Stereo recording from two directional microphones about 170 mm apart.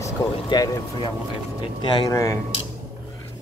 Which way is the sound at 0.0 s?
20° left (ahead or behind).